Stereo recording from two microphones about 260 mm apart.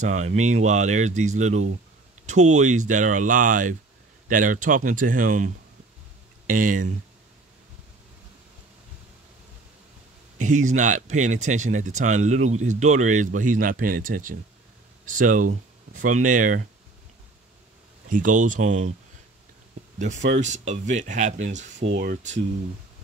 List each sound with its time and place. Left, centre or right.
0.0 s speech: right
10.4 s speech: right
18.0 s speech: right
20.2 s speech: right